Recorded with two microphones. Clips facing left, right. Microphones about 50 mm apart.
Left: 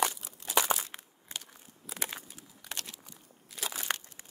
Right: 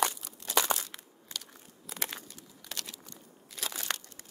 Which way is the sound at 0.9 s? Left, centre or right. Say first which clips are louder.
Left 1 dB; left.